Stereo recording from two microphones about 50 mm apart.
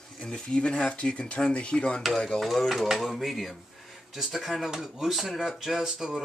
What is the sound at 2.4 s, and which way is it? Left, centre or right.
Speech, centre.